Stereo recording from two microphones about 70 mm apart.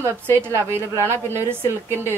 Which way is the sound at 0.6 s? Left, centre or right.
Right.